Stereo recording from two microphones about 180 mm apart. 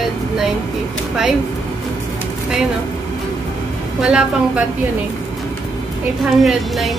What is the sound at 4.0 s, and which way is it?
Speech, 5° right (ahead or behind).